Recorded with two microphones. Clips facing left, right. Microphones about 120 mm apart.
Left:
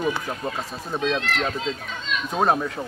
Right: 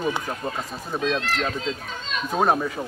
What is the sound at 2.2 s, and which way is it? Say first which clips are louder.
Speech: right 1 dB; centre (ahead or behind).